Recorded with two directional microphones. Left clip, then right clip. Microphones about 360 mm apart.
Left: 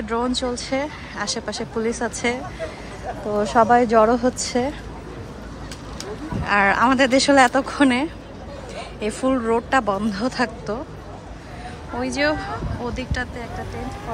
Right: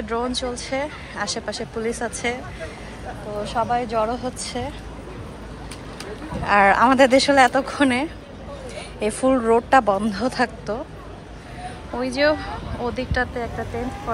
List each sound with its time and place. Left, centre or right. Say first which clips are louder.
0.1 s a woman's voice: left 2 dB; centre
3.4 s a woman's voice: left 7 dB; centre
6.4 s speech: right 2 dB; centre
12.0 s speech: right 2 dB; centre